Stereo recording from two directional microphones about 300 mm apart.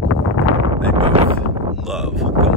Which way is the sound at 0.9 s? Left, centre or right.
Centre.